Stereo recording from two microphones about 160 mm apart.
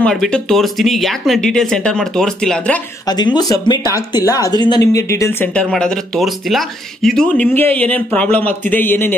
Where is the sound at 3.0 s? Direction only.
25° left (ahead or behind).